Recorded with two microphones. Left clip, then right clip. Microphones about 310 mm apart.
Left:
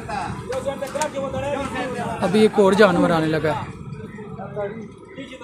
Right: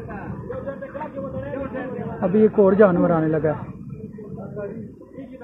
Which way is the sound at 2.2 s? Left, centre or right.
Left.